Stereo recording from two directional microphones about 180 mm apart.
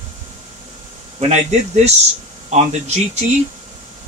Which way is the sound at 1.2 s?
40° right (ahead or behind).